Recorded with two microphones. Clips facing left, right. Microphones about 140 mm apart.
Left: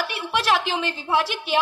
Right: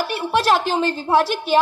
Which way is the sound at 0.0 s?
40° right (ahead or behind).